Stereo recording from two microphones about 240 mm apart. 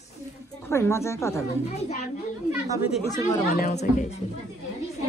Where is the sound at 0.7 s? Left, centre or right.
Centre.